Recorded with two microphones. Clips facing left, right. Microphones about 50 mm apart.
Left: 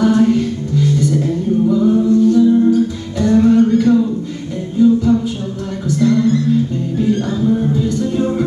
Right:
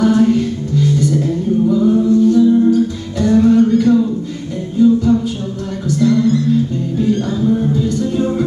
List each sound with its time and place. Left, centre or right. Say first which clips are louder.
0.0 s music: even; centre
3.7 s a sound: even; centre
4.7 s music: even; centre
5.9 s music: even; left